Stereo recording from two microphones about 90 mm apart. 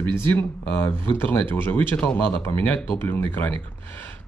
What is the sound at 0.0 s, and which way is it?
Speech, 20° left (ahead or behind).